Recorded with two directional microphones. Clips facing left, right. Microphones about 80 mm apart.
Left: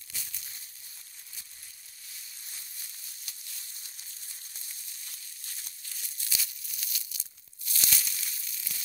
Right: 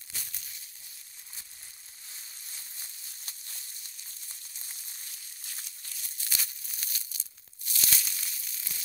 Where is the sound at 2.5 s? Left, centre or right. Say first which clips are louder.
Right 1 dB; right.